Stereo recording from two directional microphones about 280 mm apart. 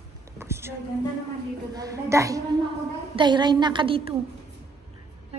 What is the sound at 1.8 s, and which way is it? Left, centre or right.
A woman's voice, centre.